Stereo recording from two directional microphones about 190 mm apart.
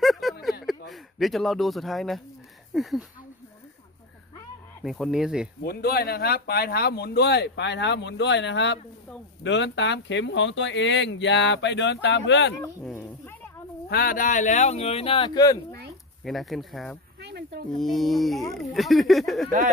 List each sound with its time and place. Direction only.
0.0 s a sound: centre (ahead or behind)
0.8 s speech: centre (ahead or behind)
4.8 s speech: centre (ahead or behind)
5.6 s speech: 55° left (ahead or behind)
12.8 s speech: 10° left (ahead or behind)
13.8 s speech: 50° left (ahead or behind); by 15.8 s 20° left (ahead or behind)
16.3 s speech: centre (ahead or behind)
17.2 s speech: 60° right (ahead or behind)
17.7 s speech: centre (ahead or behind)